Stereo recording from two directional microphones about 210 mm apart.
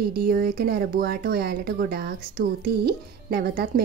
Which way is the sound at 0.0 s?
45° right (ahead or behind).